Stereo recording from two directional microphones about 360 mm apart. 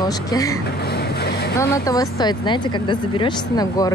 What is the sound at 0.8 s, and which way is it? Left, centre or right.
Mechanisms, left.